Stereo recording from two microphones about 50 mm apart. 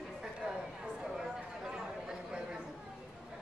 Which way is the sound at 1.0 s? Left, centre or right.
Centre.